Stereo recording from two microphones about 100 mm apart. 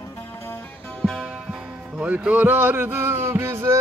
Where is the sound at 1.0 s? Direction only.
5° right (ahead or behind).